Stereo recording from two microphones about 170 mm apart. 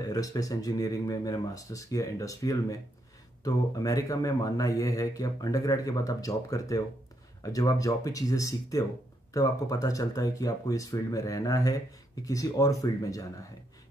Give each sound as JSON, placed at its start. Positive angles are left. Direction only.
{"t": 0.1, "sound": "speech", "side_deg": 20}